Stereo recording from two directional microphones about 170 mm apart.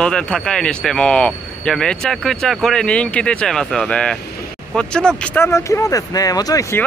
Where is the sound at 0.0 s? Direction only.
5° left (ahead or behind).